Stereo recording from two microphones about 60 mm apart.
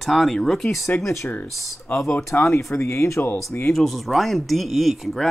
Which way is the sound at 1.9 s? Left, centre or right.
Left.